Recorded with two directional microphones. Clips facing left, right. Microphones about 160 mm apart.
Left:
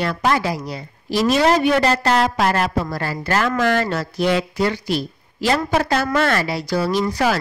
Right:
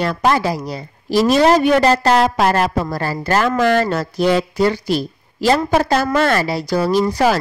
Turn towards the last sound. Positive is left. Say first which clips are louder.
# right 4 dB
turn(degrees=-40)  # may be behind; listen again after turning